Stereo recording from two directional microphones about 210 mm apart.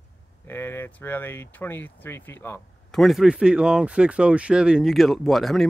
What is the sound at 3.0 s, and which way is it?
Speech, centre (ahead or behind).